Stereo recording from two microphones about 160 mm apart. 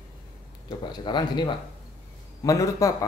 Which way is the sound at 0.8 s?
30° left (ahead or behind).